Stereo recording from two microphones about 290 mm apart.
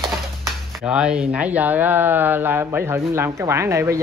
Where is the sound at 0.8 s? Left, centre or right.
Centre.